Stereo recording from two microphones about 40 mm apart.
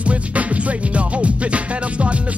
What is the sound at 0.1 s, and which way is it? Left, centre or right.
Music, right.